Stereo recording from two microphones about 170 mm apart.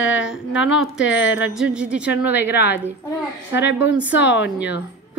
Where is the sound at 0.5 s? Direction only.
90° left.